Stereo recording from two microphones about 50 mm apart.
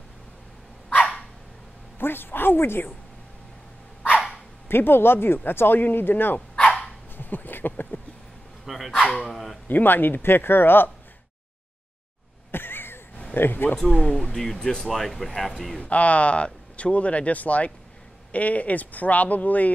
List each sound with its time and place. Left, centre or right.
2.0 s speech: left
4.6 s speech: left
7.2 s a sound: left
8.6 s speech: centre
9.7 s speech: left
12.4 s a sound: left
13.3 s speech: left
13.8 s speech: centre
15.8 s speech: left